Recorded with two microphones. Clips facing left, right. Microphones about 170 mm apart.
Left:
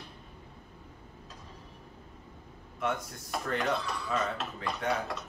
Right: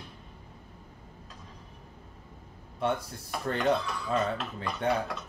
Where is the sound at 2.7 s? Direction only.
30° right (ahead or behind).